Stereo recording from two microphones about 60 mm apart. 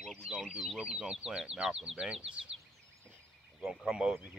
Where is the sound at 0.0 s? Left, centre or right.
Centre.